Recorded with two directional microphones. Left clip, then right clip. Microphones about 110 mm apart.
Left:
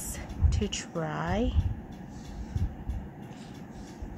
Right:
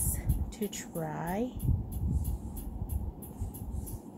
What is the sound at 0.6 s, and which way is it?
Speech, 25° left (ahead or behind).